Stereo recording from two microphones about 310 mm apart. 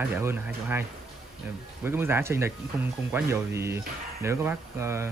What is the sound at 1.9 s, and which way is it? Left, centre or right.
Speech, centre.